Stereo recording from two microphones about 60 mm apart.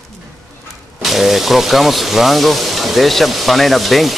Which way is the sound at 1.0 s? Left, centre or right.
Centre.